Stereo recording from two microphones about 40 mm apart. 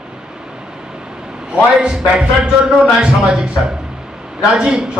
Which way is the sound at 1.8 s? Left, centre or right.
Right.